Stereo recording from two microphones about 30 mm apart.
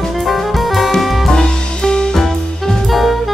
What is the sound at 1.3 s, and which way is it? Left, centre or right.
Music, left.